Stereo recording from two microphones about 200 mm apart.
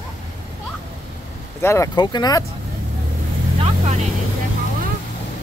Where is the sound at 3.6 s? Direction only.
30° right (ahead or behind).